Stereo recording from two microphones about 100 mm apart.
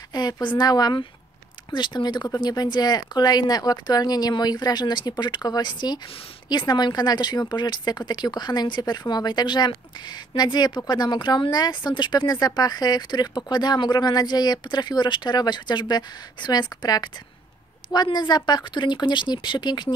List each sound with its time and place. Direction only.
0.1 s speech: 45° left (ahead or behind)